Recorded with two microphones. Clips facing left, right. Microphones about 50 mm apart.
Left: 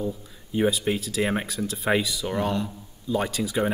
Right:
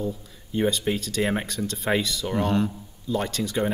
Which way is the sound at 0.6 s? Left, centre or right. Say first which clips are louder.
Left 1 dB; centre.